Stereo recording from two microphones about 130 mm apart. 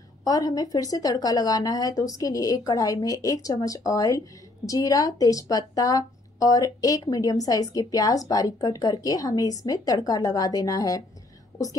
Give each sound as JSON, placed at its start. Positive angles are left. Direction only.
{"t": 0.2, "sound": "speech", "side_deg": 30}